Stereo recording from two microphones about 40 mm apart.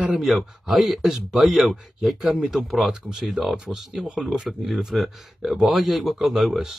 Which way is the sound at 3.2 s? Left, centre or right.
Centre.